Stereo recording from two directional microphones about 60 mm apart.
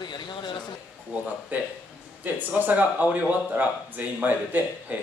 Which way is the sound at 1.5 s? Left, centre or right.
Right.